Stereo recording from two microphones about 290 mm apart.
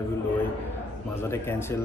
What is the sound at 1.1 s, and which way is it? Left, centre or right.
Speech, centre.